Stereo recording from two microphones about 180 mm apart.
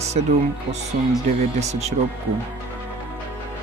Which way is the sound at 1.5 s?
40° right (ahead or behind).